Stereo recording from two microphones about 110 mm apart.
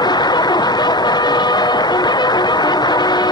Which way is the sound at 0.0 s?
40° left (ahead or behind).